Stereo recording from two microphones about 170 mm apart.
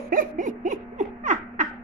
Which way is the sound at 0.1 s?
50° right (ahead or behind).